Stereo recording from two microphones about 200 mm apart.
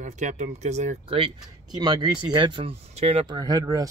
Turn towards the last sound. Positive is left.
turn(degrees=-20)  # may be behind; listen again after turning